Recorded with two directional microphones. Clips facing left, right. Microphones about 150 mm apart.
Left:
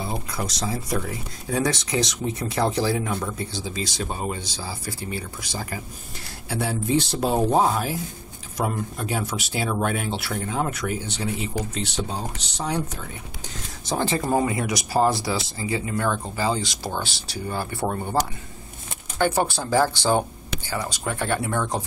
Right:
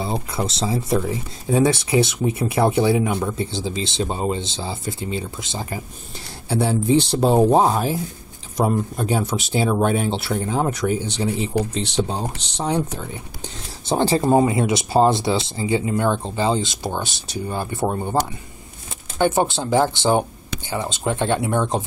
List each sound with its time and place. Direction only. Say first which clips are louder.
0.0 s speech: right 5 dB; 25° right (ahead or behind)
13.8 s speech: right 6 dB; 30° right (ahead or behind)
19.1 s speech: right 3 dB; 20° right (ahead or behind)